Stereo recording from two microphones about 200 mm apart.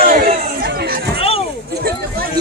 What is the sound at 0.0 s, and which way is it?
Chatter, 45° right (ahead or behind).